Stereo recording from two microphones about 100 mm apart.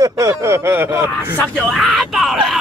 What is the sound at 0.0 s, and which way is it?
Speech, 30° right (ahead or behind).